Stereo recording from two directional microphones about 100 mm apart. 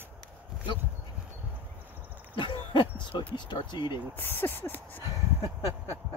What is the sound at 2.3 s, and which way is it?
Speech, 55° left (ahead or behind).